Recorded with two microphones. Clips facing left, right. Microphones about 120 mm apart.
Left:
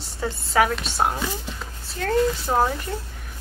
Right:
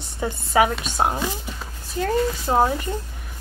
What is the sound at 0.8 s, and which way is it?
Speech, 15° right (ahead or behind).